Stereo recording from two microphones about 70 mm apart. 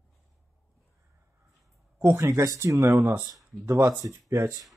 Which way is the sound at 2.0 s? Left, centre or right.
Right.